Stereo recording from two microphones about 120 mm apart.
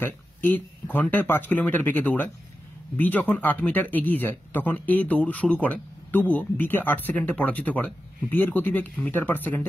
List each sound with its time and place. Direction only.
0.0 s speech: 15° left (ahead or behind)